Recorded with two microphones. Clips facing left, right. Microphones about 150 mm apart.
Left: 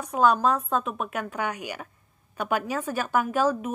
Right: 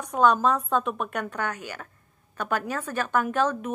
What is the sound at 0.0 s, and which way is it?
A woman's voice, 5° left (ahead or behind).